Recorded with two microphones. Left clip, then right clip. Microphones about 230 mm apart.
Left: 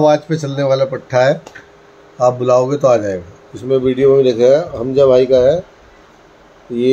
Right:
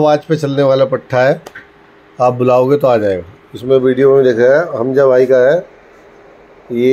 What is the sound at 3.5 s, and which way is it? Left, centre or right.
Speech, centre.